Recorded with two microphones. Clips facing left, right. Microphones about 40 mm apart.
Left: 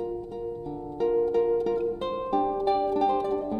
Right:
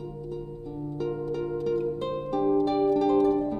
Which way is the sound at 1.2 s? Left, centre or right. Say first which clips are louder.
Left 7 dB; centre.